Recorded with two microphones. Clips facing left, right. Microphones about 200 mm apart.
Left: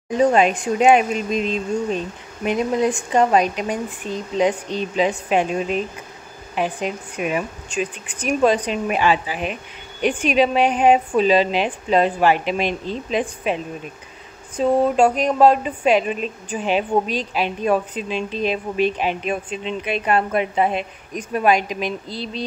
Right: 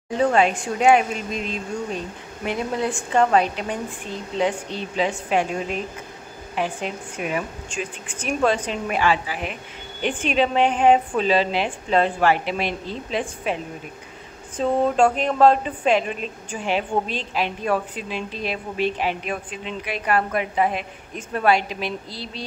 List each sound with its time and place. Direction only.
0.2 s a woman's voice: 20° left (ahead or behind)
14.6 s a woman's voice: 15° left (ahead or behind)